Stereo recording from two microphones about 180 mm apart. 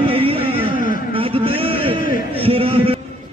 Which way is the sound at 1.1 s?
30° right (ahead or behind).